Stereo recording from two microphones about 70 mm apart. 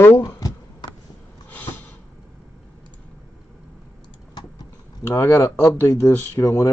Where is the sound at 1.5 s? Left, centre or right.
Left.